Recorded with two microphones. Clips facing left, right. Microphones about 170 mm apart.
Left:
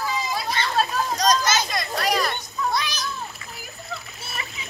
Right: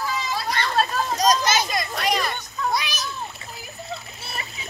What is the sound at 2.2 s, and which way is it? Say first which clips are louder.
Children playing: even; 10° right (ahead or behind).